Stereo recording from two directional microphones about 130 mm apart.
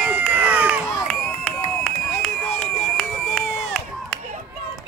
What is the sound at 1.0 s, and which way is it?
Run, 5° left (ahead or behind).